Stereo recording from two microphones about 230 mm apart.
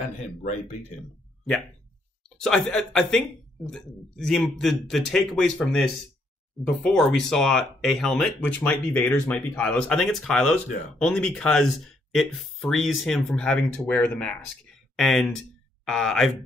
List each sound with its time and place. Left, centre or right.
0.4 s speech: left
2.4 s speech: centre